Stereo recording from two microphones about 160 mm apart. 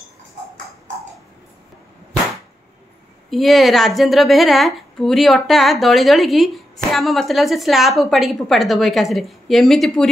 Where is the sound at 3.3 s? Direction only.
Centre (ahead or behind).